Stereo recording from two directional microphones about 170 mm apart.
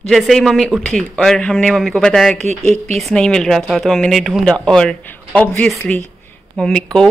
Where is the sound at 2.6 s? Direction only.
40° right (ahead or behind).